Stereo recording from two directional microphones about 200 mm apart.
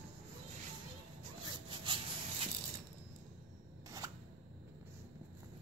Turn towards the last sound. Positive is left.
turn(degrees=-15)  # may be behind; listen again after turning